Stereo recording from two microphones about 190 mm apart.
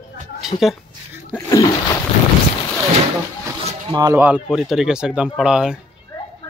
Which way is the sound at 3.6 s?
35° right (ahead or behind).